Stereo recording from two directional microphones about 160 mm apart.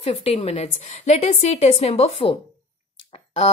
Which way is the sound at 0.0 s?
45° left (ahead or behind).